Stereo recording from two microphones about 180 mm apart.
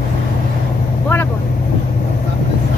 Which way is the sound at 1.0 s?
10° left (ahead or behind).